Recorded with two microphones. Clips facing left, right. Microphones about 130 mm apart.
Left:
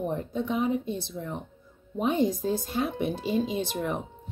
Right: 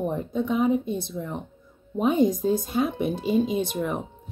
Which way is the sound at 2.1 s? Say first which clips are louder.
Right 4 dB; 15° right (ahead or behind).